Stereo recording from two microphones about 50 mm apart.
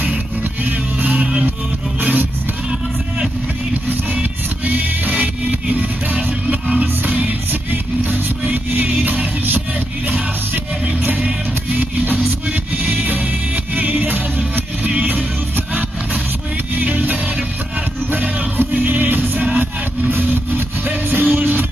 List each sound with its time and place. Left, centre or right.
0.7 s music: right
2.0 s vehicle: right
4.1 s music: right
11.7 s music: right
19.6 s vehicle: right
21.1 s music: right